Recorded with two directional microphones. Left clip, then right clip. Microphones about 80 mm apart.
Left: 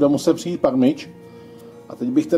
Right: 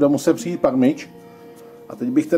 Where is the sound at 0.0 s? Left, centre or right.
Centre.